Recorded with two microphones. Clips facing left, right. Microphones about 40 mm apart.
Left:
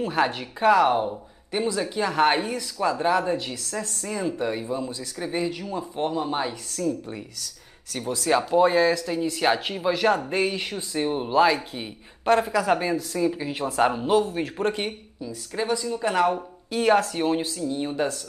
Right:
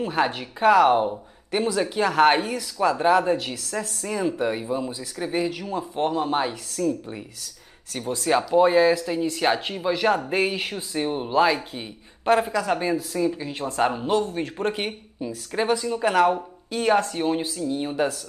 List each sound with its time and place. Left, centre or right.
0.0 s speech: centre
6.3 s speech: centre
12.5 s speech: centre
14.7 s speech: centre
15.1 s speech: right
16.2 s speech: centre
16.7 s speech: centre
17.4 s speech: centre